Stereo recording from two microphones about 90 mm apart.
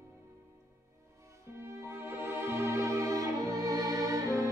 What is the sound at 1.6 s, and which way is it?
Music, 30° right (ahead or behind).